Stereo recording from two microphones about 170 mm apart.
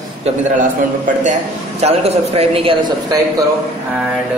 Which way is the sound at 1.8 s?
35° right (ahead or behind).